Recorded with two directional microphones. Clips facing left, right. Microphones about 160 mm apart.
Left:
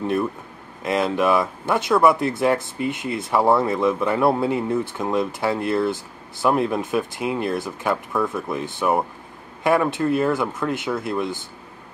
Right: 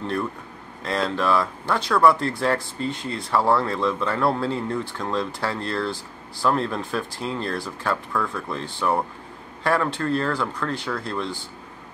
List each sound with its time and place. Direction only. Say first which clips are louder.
0.0 s speech: left 4 dB; 15° left (ahead or behind)